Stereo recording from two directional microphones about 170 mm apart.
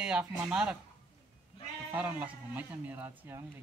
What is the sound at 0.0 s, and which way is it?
Speech, 5° right (ahead or behind).